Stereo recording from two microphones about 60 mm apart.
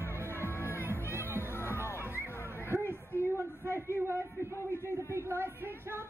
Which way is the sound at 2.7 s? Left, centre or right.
Right.